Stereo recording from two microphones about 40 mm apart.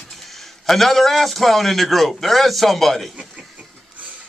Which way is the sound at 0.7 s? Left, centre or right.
Centre.